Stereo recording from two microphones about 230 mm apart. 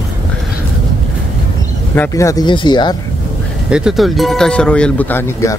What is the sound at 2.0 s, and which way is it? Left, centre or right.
Speech, centre.